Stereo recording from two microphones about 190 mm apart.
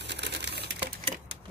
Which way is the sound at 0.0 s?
65° right (ahead or behind).